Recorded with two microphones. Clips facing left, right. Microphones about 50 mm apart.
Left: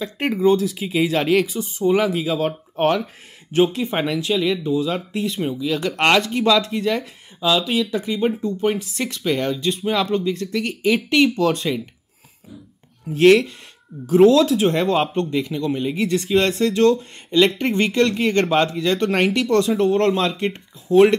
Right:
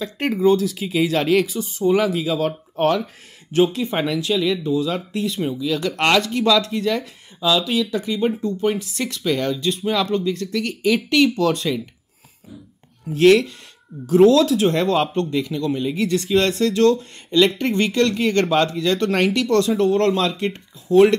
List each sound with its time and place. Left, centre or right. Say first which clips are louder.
0.0 s speech: even; centre
13.1 s speech: even; left